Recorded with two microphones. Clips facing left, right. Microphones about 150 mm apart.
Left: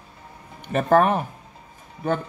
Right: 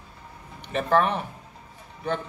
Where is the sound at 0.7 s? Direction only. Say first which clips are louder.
Left 4 dB; 45° left (ahead or behind).